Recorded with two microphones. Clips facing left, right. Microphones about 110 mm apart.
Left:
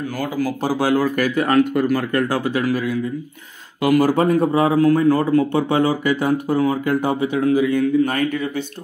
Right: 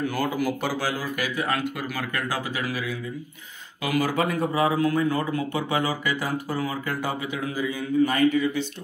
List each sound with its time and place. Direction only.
0.6 s speech: 45° left (ahead or behind)
4.7 s speech: 40° left (ahead or behind)
5.5 s speech: 30° left (ahead or behind)
6.9 s speech: 60° left (ahead or behind)
7.5 s speech: 70° left (ahead or behind); by 8.6 s 55° left (ahead or behind)